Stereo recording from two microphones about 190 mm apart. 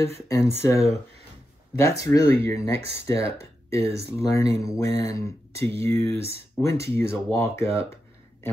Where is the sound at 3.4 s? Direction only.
15° left (ahead or behind).